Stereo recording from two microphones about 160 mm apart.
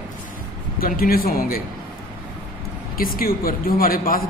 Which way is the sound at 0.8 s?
65° left (ahead or behind).